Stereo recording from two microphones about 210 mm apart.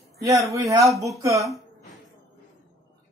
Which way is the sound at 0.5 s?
15° right (ahead or behind).